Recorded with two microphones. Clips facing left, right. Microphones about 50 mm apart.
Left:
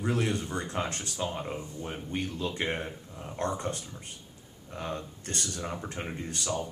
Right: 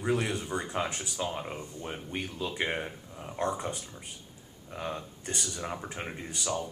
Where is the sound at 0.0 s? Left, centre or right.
Centre.